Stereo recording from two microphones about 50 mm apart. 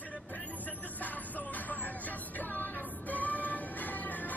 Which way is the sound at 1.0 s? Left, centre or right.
Left.